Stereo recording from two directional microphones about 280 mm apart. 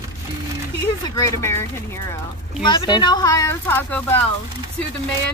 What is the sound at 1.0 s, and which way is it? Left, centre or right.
Speech, centre.